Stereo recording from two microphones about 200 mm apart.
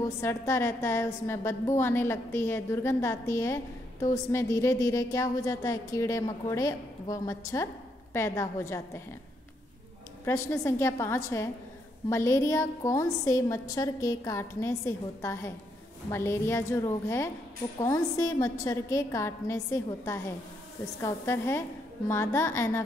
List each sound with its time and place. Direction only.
0.0 s a woman's voice: 15° left (ahead or behind)
10.2 s a woman's voice: 15° left (ahead or behind)